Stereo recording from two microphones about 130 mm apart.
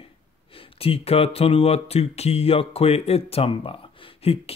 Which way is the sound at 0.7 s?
50° left (ahead or behind).